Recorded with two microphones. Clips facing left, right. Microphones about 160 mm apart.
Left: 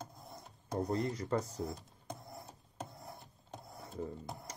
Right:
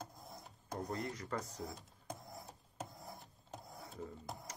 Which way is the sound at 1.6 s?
Centre (ahead or behind).